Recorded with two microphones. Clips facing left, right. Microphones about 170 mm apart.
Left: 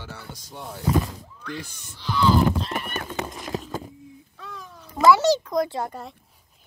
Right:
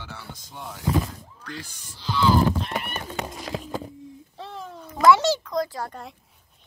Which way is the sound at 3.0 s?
50° left (ahead or behind).